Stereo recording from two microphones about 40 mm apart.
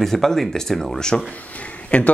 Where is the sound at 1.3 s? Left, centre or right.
Left.